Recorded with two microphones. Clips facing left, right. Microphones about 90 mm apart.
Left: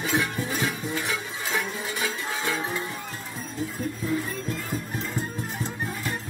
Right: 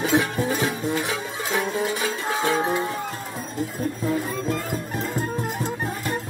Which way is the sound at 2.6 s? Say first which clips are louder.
Right 7 dB; 60° right (ahead or behind).